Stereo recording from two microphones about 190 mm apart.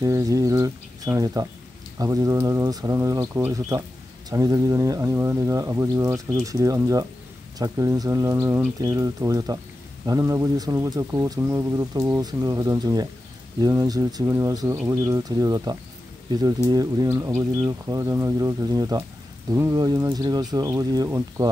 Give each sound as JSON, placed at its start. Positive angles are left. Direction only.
{"t": 0.0, "sound": "speech", "side_deg": -15}